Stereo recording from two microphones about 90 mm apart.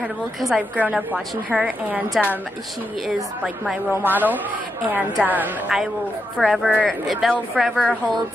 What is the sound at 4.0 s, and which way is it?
A woman's voice, 20° right (ahead or behind).